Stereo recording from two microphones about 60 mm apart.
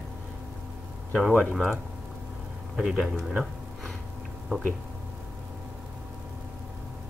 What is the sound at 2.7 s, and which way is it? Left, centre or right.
Speech, centre.